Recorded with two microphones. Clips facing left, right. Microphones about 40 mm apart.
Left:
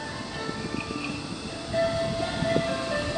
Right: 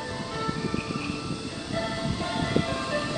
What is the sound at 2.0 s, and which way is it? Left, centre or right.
Music, centre.